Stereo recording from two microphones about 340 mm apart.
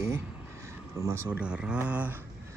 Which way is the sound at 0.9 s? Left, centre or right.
Centre.